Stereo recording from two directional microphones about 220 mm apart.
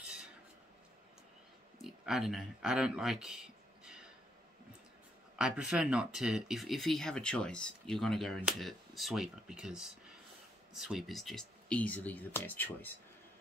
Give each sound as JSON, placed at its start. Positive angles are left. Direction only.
{"t": 1.8, "sound": "speech", "side_deg": 0}
{"t": 5.3, "sound": "speech", "side_deg": -5}